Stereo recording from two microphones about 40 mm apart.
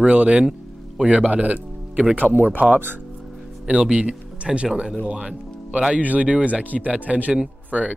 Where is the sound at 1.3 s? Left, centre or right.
Right.